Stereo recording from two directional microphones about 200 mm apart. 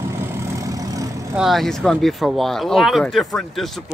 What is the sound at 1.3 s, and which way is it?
Speech, centre (ahead or behind).